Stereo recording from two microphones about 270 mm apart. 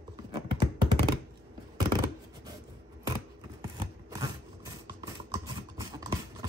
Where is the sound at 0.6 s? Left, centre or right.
Centre.